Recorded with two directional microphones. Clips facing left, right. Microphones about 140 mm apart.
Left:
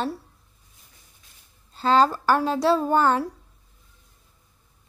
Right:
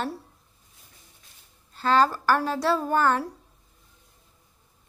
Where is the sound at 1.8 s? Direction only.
25° left (ahead or behind).